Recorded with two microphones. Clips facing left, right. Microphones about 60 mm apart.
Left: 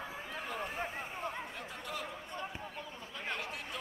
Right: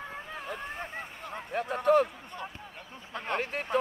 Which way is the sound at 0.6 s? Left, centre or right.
Centre.